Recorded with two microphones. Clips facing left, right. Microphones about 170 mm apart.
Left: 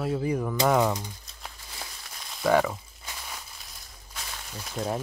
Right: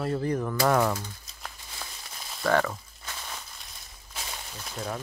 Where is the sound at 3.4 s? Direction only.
Centre (ahead or behind).